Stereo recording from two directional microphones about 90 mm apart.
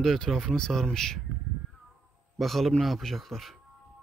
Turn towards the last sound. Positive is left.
turn(degrees=0)  # may be behind; listen again after turning